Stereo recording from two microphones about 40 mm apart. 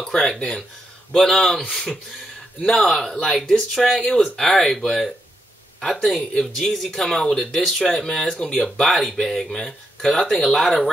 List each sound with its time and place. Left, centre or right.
0.0 s speech: centre
3.1 s speech: centre